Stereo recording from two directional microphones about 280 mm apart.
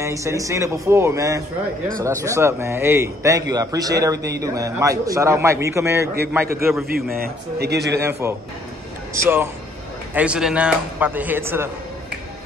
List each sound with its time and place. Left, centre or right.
0.0 s a man's voice: centre
6.9 s a man's voice: right
8.0 s a man's voice: centre